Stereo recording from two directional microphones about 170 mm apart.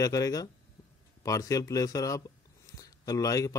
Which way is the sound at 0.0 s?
20° left (ahead or behind).